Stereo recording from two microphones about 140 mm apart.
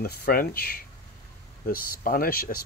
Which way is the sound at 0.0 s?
90° left.